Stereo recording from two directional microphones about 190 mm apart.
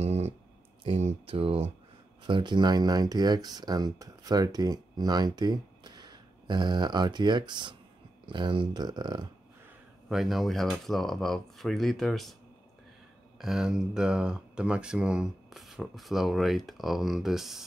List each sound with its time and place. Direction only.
0.0 s a sound: 35° right (ahead or behind)
0.8 s speech: 30° right (ahead or behind)
10.0 s speech: centre (ahead or behind)
13.4 s speech: 5° right (ahead or behind)